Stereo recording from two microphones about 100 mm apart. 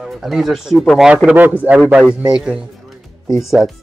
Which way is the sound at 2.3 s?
5° right (ahead or behind).